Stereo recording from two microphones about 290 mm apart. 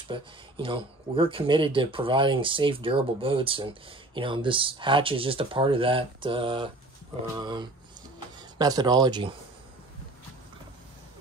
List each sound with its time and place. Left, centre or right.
0.1 s speech: centre